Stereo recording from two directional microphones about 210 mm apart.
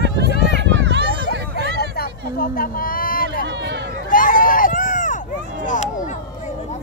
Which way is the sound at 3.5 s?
55° right (ahead or behind).